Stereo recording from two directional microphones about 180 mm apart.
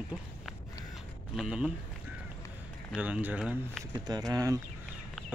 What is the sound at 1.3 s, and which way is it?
Speech, 5° right (ahead or behind).